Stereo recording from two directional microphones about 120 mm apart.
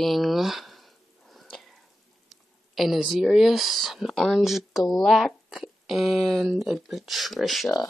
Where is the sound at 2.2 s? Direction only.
Centre (ahead or behind).